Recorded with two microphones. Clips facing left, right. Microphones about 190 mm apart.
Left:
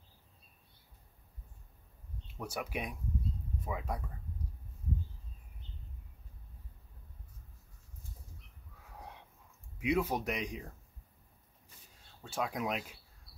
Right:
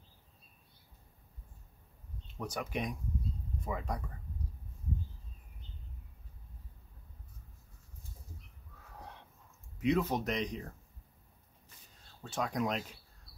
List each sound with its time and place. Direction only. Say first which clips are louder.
2.3 s speech: right 1 dB; 10° left (ahead or behind)
9.8 s speech: right 1 dB; 10° left (ahead or behind)
12.2 s speech: right 2 dB; 5° left (ahead or behind)